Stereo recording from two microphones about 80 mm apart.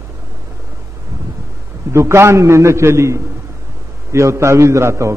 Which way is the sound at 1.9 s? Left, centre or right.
Right.